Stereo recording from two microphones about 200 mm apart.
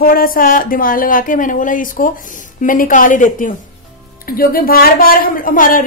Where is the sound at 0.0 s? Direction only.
45° left (ahead or behind).